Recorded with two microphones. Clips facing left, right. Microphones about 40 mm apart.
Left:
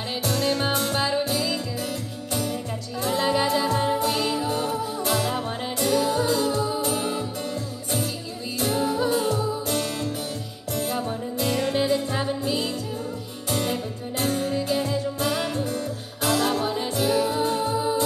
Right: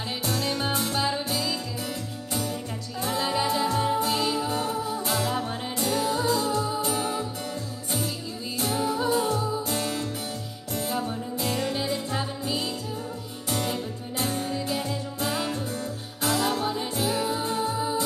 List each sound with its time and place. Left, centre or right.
0.2 s music: left
3.0 s music: left
8.5 s music: left